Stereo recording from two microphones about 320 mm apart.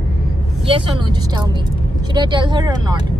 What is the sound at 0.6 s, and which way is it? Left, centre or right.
Speech, centre.